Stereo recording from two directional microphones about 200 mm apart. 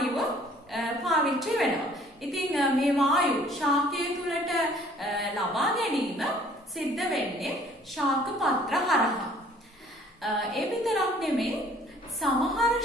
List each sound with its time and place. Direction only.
0.7 s a sound: centre (ahead or behind)
2.3 s a woman's voice: centre (ahead or behind)
10.2 s a woman's voice: centre (ahead or behind)